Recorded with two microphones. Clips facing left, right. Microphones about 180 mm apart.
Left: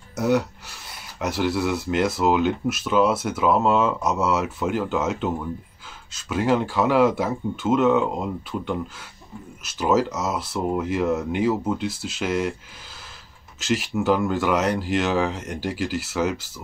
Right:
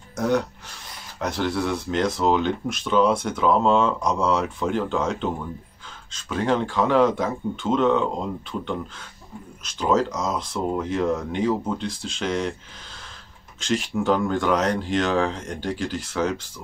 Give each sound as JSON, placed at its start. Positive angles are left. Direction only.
{"t": 0.1, "sound": "speech", "side_deg": 10}
{"t": 13.6, "sound": "speech", "side_deg": 5}